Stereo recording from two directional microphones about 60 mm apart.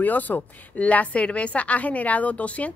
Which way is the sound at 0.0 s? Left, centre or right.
Left.